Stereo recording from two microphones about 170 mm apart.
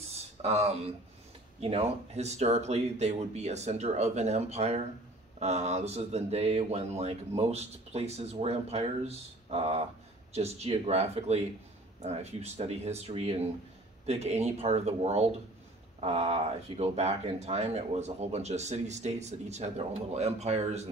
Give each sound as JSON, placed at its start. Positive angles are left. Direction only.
{"t": 0.4, "sound": "speech", "side_deg": -35}